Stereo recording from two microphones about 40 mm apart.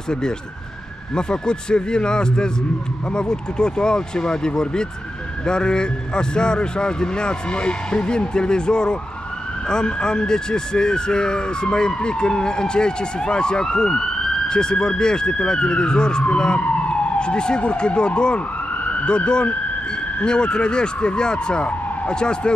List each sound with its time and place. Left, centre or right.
1.1 s speech: centre